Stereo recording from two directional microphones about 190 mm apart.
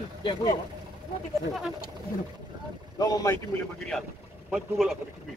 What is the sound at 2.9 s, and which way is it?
Speech, 20° left (ahead or behind).